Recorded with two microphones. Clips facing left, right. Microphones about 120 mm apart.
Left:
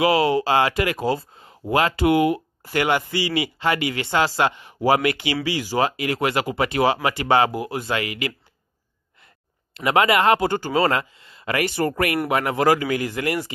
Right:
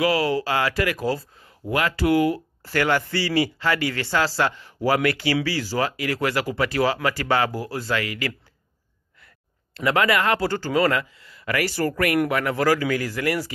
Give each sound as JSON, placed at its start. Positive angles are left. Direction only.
{"t": 0.0, "sound": "speech", "side_deg": 25}
{"t": 9.8, "sound": "speech", "side_deg": 20}